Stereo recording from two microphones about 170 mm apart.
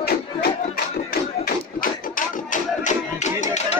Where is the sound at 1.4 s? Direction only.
55° left (ahead or behind).